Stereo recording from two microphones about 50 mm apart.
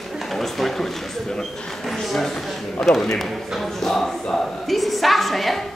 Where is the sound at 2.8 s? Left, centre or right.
Centre.